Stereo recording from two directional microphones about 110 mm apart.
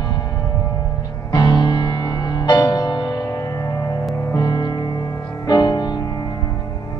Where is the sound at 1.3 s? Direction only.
35° left (ahead or behind).